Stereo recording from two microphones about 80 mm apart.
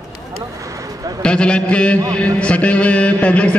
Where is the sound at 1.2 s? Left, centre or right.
Centre.